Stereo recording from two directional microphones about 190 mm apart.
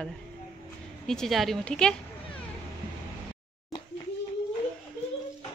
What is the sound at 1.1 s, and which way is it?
Speech, centre (ahead or behind).